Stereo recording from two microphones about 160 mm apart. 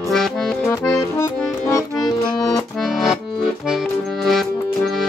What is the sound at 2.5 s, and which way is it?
Accordion, centre (ahead or behind).